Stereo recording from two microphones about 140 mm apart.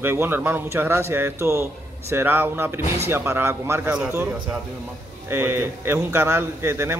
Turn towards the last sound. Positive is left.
turn(degrees=-15)  # may be behind; listen again after turning